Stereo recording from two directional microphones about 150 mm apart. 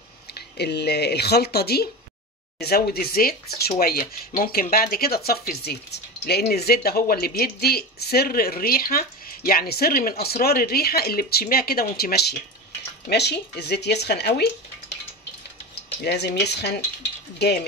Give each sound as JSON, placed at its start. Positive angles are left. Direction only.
{"t": 0.3, "sound": "speech", "side_deg": 90}
{"t": 16.0, "sound": "speech", "side_deg": 90}